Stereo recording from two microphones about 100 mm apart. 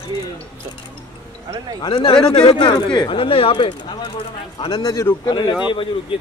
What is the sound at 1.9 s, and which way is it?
Speech, 60° left (ahead or behind).